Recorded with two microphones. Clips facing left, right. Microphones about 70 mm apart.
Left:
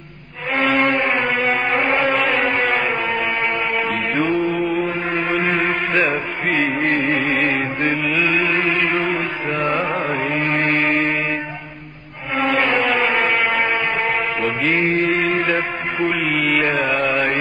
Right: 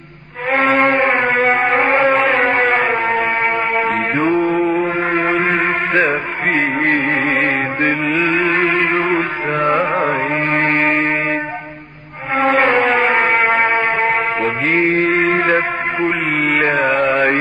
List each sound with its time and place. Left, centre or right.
0.5 s a sound: right
3.7 s music: right
4.8 s mantra: right
6.5 s music: right
12.4 s a sound: right
13.5 s music: right
16.3 s music: right